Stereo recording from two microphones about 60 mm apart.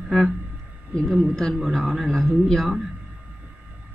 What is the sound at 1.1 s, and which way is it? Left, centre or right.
Speech, centre.